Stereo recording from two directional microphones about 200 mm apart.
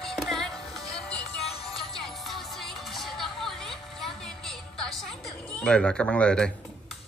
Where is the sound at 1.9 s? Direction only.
Centre (ahead or behind).